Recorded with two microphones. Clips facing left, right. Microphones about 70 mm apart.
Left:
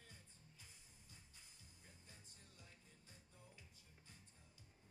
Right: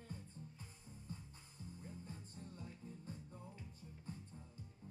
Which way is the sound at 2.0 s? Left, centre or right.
Right.